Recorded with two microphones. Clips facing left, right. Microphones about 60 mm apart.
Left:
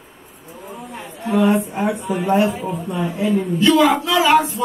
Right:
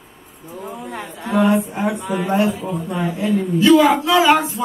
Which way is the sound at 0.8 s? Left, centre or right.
Right.